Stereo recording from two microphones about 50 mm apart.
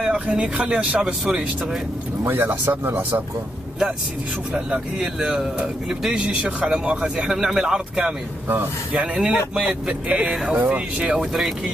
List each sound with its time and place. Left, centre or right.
0.0 s speech: centre
2.2 s speech: right
3.0 s speech: right
4.6 s speech: centre
11.1 s speech: centre